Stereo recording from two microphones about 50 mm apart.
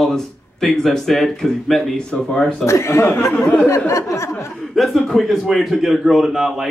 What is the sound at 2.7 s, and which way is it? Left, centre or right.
Speech, left.